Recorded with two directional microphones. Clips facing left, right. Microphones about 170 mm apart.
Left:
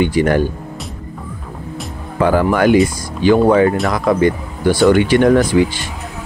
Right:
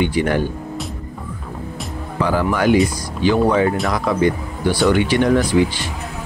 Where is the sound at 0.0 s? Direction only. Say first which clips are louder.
Left 4 dB; 45° left (ahead or behind).